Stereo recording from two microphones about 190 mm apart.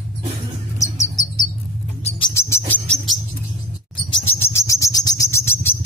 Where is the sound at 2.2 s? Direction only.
20° left (ahead or behind).